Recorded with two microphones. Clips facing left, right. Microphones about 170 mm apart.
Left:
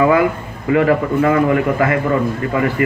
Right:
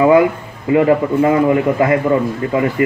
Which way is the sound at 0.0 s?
20° right (ahead or behind).